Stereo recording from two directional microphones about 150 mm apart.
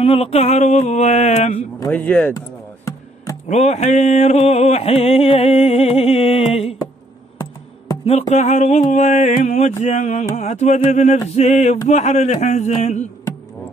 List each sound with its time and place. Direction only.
0.0 s mantra: 40° left (ahead or behind)
1.9 s speech: 10° left (ahead or behind)
2.3 s music: 20° left (ahead or behind)
3.4 s mantra: 45° left (ahead or behind)
8.0 s mantra: 50° left (ahead or behind)